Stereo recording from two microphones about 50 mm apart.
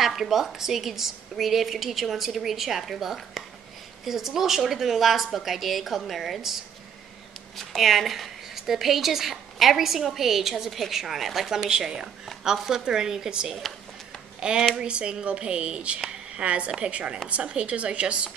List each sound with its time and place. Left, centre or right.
0.0 s a woman's voice: centre; by 18.3 s right